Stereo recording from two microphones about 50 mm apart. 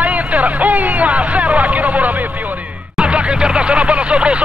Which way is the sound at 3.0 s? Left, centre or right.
Right.